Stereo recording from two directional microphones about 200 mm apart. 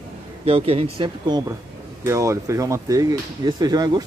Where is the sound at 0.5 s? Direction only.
30° right (ahead or behind).